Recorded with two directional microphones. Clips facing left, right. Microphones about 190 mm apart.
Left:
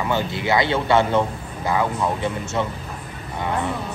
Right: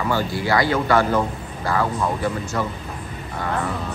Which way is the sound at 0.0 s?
20° left (ahead or behind).